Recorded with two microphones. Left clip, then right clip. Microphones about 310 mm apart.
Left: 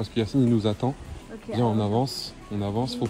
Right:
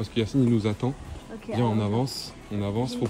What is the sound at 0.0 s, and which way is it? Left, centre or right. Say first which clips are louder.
Speech: left 1 dB; centre.